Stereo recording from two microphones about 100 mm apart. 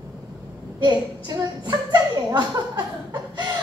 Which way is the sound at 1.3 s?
40° right (ahead or behind).